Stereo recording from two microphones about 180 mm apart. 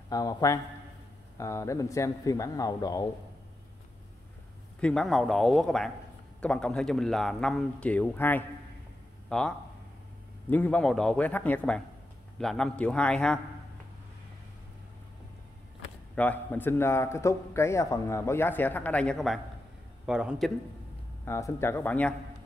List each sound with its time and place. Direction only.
0.1 s a man's voice: 20° left (ahead or behind)
4.7 s a man's voice: 5° left (ahead or behind)
16.2 s a man's voice: 10° left (ahead or behind)
21.3 s a man's voice: 15° left (ahead or behind)